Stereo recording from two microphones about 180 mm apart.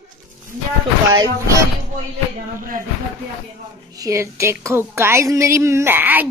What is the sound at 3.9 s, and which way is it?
A woman's voice, 20° right (ahead or behind).